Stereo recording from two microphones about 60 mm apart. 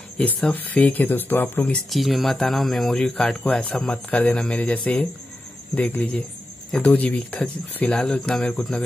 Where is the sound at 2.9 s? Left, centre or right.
Centre.